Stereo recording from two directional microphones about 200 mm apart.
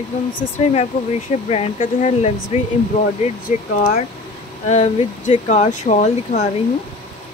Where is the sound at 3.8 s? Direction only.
35° left (ahead or behind).